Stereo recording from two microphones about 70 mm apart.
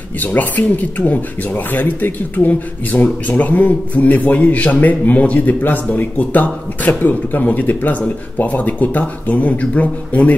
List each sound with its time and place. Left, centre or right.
0.2 s speech: left